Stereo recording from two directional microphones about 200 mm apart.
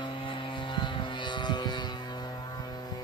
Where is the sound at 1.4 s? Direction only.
20° left (ahead or behind).